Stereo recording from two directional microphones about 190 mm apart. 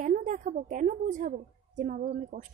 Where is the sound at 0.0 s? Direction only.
40° right (ahead or behind).